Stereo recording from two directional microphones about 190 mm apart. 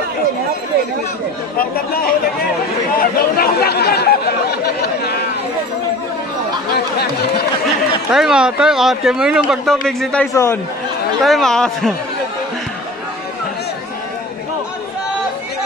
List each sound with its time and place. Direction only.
1.6 s speech: 50° left (ahead or behind)
3.0 s chatter: 50° left (ahead or behind)
6.7 s speech: 60° left (ahead or behind)
8.1 s speech: 5° right (ahead or behind)
10.3 s speech: 15° left (ahead or behind)
11.2 s speech: centre (ahead or behind)